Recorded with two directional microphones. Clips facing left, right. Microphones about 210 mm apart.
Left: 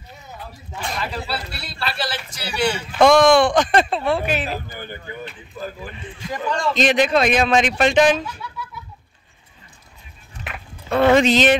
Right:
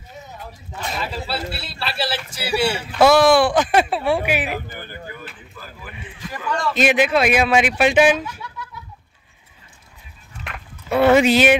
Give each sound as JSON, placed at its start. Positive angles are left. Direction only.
{"t": 1.6, "sound": "speech", "side_deg": -5}
{"t": 2.5, "sound": "a man's voice", "side_deg": -30}
{"t": 3.0, "sound": "a man's voice", "side_deg": -5}
{"t": 6.1, "sound": "speech", "side_deg": 25}
{"t": 6.7, "sound": "a man's voice", "side_deg": -5}
{"t": 10.5, "sound": "livestock", "side_deg": 0}
{"t": 10.9, "sound": "speech", "side_deg": -10}